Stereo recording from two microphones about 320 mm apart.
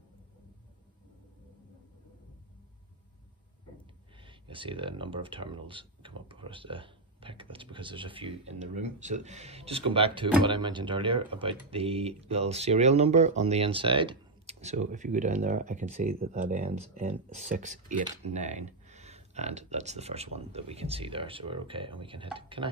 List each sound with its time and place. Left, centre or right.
4.2 s speech: centre